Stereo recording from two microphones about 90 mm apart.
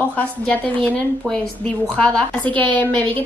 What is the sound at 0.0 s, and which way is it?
Speech, 15° left (ahead or behind).